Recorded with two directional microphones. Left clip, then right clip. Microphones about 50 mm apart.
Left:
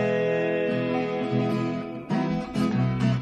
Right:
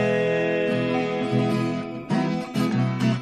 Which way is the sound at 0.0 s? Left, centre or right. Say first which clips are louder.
Right 2 dB; left.